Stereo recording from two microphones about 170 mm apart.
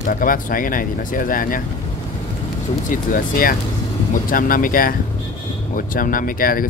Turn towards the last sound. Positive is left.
turn(degrees=55)  # may be behind; listen again after turning